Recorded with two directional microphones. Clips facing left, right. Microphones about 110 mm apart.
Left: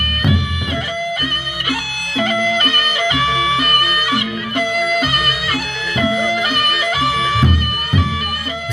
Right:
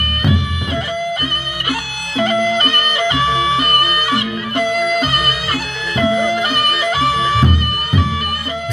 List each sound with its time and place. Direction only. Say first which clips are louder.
1.7 s music: even; 35° right (ahead or behind)